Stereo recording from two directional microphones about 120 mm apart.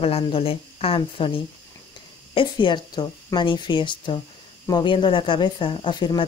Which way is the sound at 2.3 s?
45° left (ahead or behind).